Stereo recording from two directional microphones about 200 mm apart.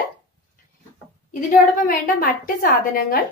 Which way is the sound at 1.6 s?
45° left (ahead or behind).